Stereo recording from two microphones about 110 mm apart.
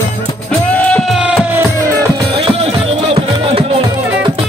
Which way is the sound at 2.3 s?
55° right (ahead or behind).